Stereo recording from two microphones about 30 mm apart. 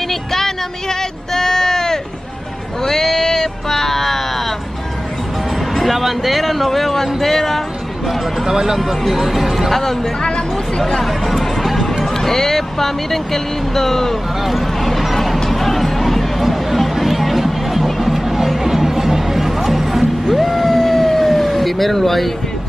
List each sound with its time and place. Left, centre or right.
0.1 s a sound: centre
5.8 s a sound: centre
8.5 s speech: right
8.7 s speech: centre
9.7 s speech: centre
11.0 s speech: centre
12.0 s speech: centre
14.4 s a sound: centre
15.5 s music: centre
20.2 s vehicle: centre
20.7 s emergency vehicle: centre